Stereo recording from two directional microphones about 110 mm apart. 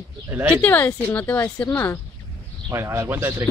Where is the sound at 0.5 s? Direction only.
15° left (ahead or behind).